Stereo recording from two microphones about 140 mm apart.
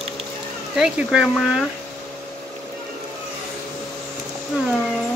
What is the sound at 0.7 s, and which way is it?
Speech, 5° right (ahead or behind).